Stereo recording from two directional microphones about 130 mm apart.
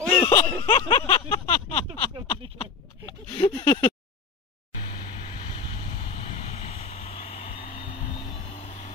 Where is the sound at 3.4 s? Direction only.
40° left (ahead or behind).